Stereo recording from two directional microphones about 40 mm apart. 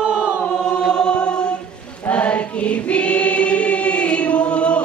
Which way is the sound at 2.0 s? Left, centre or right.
Left.